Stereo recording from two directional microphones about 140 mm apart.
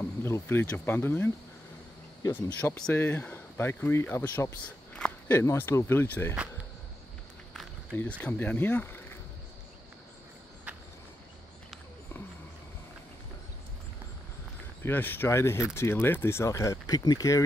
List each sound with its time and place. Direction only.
0.0 s speech: 15° left (ahead or behind)
2.6 s speech: 10° left (ahead or behind)
7.5 s speech: 10° left (ahead or behind)
14.8 s speech: 15° left (ahead or behind)